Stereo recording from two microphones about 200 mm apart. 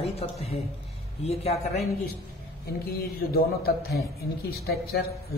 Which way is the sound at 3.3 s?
50° left (ahead or behind).